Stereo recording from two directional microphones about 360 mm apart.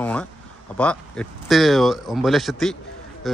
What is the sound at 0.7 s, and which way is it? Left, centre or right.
Speech, centre.